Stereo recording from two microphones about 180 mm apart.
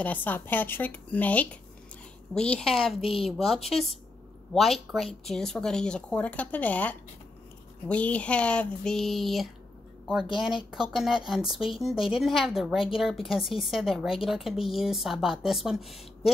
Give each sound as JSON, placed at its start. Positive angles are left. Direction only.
{"t": 0.0, "sound": "speech", "side_deg": 10}
{"t": 3.0, "sound": "a woman's voice", "side_deg": 30}
{"t": 3.3, "sound": "speech", "side_deg": 0}